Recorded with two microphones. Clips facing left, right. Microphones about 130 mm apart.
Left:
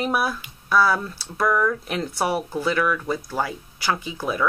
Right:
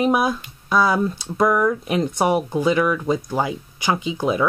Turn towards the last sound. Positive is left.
turn(degrees=-20)  # may be behind; listen again after turning